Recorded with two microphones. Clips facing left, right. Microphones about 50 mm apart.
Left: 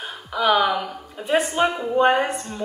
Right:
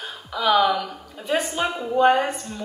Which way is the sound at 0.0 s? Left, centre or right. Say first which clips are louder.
Left 2 dB; centre.